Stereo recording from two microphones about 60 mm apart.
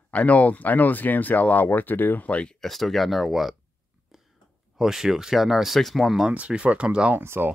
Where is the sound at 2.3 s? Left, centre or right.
Left.